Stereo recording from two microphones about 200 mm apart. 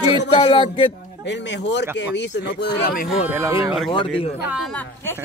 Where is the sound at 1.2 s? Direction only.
60° left (ahead or behind).